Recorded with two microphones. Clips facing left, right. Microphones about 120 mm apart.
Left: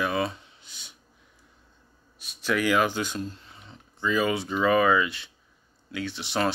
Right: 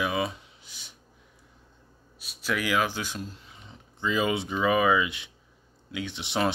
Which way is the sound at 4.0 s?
20° right (ahead or behind).